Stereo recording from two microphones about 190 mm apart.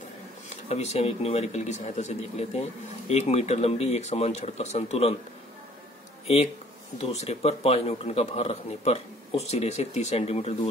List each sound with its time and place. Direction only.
0.5 s a man's voice: 35° left (ahead or behind)
6.2 s a man's voice: 30° left (ahead or behind)